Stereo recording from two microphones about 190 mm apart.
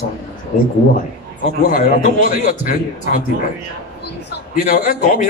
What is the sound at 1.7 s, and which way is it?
A man's voice, 45° left (ahead or behind).